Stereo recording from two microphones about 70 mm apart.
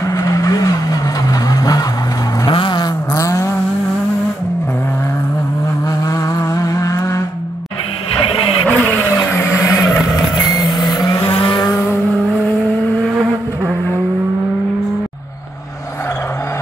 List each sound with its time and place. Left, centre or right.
0.2 s vehicle: left
2.4 s vehicle: left
3.2 s vehicle: left
6.0 s vehicle: left
8.6 s a sound: left
9.3 s vehicle: left
10.5 s vehicle: left